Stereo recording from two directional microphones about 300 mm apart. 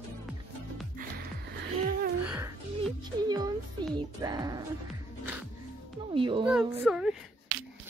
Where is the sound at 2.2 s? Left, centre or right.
Centre.